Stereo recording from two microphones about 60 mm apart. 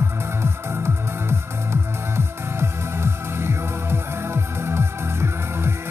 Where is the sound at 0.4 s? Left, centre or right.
Right.